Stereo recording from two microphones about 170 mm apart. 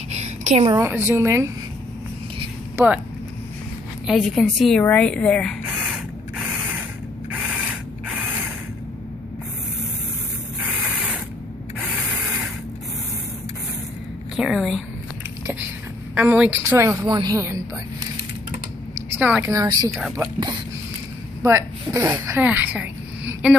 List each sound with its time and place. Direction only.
0.1 s a sound: 40° right (ahead or behind)
0.7 s a woman's voice: 15° right (ahead or behind)
2.8 s a woman's voice: 15° right (ahead or behind)
4.1 s a woman's voice: centre (ahead or behind)
14.3 s a woman's voice: centre (ahead or behind)
16.2 s a woman's voice: 10° right (ahead or behind)
19.0 s a woman's voice: 10° right (ahead or behind)
19.5 s speech: 20° right (ahead or behind)